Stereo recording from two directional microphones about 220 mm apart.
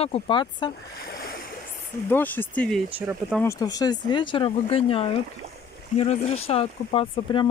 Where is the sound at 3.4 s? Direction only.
15° left (ahead or behind).